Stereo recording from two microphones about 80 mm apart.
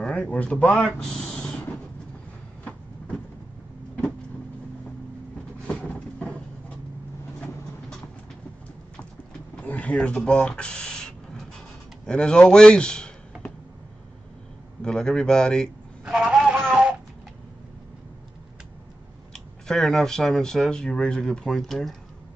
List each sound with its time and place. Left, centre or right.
0.1 s a man's voice: centre
0.9 s a sound: centre
5.7 s vehicle: centre
7.3 s vehicle: centre
9.7 s a sound: centre
12.1 s a man's voice: centre
14.8 s a man's voice: centre
16.1 s vehicle: centre
19.3 s speech: centre